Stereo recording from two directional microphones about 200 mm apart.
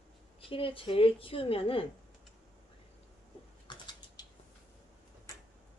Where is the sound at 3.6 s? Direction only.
20° left (ahead or behind).